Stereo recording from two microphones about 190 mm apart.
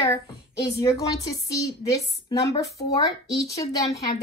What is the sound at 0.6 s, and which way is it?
A woman's voice, 15° left (ahead or behind).